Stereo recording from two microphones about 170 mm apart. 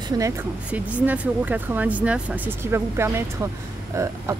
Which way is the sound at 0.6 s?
10° right (ahead or behind).